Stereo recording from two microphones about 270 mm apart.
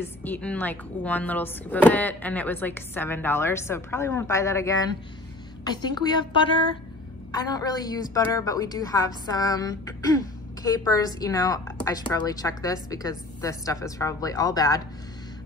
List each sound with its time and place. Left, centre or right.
0.0 s a woman's voice: centre